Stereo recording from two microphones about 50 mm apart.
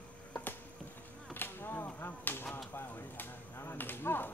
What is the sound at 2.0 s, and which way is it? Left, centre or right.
Speech, left.